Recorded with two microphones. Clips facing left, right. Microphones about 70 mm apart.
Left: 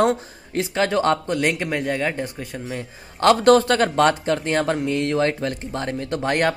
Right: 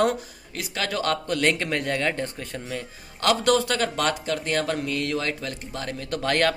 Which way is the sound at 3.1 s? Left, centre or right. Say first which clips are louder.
Left 7 dB; left.